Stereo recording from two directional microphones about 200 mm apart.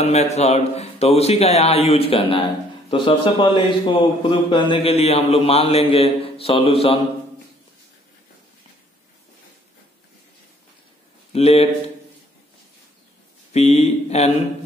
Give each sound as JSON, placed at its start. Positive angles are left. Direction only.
{"t": 0.0, "sound": "a man's voice", "side_deg": 35}
{"t": 11.3, "sound": "a man's voice", "side_deg": 30}
{"t": 13.5, "sound": "a man's voice", "side_deg": 30}